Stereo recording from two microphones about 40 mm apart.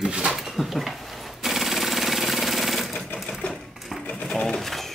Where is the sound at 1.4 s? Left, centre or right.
Centre.